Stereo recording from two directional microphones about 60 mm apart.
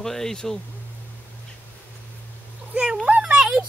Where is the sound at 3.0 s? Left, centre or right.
Centre.